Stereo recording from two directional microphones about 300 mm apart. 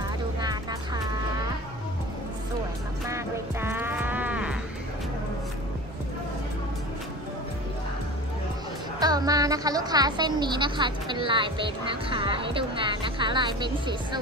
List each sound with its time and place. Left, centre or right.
0.4 s music: centre
3.6 s livestock: centre
9.0 s a woman's voice: centre